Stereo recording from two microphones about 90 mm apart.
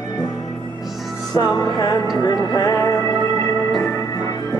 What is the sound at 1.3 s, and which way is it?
Music, 50° left (ahead or behind).